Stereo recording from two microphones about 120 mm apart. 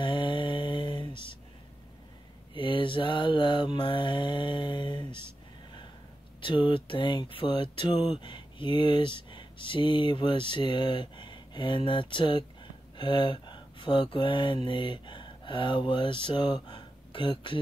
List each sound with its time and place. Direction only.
0.0 s mantra: 40° left (ahead or behind)
2.5 s mantra: 45° left (ahead or behind)
6.4 s speech: 45° left (ahead or behind)